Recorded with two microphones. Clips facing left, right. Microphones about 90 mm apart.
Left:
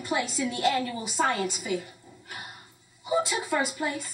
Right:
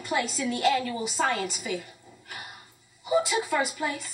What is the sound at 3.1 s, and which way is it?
Speech, centre (ahead or behind).